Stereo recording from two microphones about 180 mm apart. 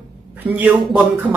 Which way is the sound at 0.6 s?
10° right (ahead or behind).